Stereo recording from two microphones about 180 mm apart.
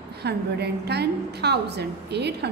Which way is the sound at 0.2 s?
65° right (ahead or behind).